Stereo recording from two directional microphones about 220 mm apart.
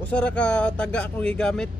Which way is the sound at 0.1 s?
5° left (ahead or behind).